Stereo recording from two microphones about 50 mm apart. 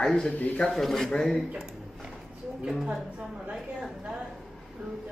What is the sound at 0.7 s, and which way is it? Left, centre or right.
Speech, centre.